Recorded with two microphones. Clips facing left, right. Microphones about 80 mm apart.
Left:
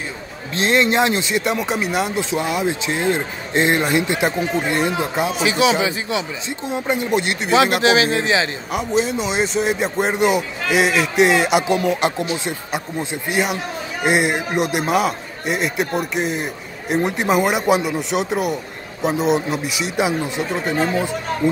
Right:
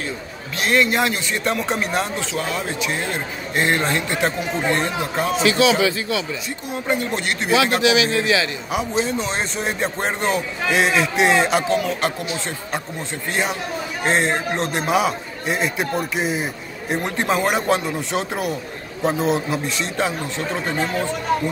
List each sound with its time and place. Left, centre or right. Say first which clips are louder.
0.6 s speech: left 2 dB; left
1.4 s speech: left 1 dB; centre
7.8 s speech: left 2 dB; left
8.7 s a man's voice: left 2 dB; centre
11.6 s a man's voice: left 2 dB; centre